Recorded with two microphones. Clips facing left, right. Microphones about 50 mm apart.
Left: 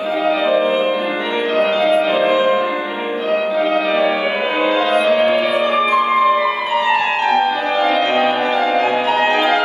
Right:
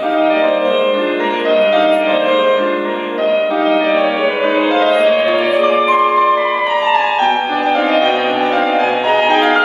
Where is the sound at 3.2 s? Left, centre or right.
Right.